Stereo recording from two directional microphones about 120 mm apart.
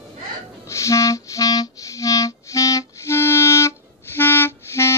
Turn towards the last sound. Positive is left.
turn(degrees=20)  # may be behind; listen again after turning